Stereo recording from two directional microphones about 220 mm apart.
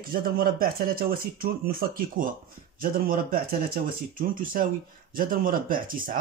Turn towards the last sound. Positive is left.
turn(degrees=-40)  # may be behind; listen again after turning